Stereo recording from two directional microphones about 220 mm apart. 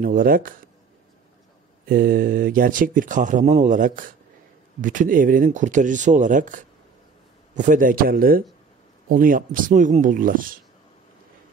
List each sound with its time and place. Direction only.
0.0 s speech: 40° right (ahead or behind)
1.9 s speech: 40° right (ahead or behind)